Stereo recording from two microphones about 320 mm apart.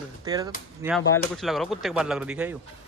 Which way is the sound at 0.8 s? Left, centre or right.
Centre.